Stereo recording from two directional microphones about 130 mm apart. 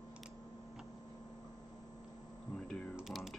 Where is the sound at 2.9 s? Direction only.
Centre (ahead or behind).